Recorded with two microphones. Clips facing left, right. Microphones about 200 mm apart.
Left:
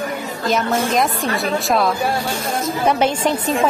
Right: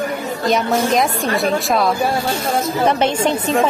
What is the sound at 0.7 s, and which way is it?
A woman's voice, centre (ahead or behind).